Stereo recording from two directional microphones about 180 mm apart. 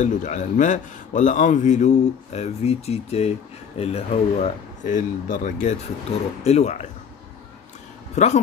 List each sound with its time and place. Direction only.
0.0 s a man's voice: 45° left (ahead or behind)
8.2 s a man's voice: 40° left (ahead or behind)